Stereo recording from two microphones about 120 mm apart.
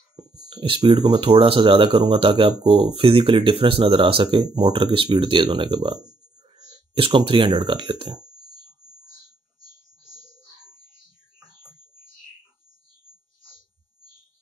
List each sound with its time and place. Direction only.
0.1 s speech: 45° right (ahead or behind)
7.0 s speech: 45° right (ahead or behind)